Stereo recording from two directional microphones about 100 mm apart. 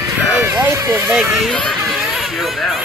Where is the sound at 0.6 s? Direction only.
35° right (ahead or behind).